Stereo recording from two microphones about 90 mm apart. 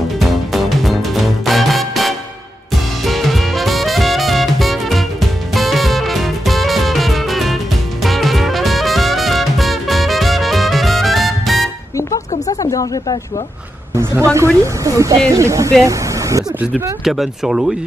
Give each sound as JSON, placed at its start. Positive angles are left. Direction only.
{"t": 0.2, "sound": "music", "side_deg": 0}
{"t": 12.0, "sound": "a sound", "side_deg": 40}
{"t": 14.3, "sound": "speech", "side_deg": -35}
{"t": 15.8, "sound": "vehicle", "side_deg": -35}
{"t": 17.0, "sound": "speech", "side_deg": -5}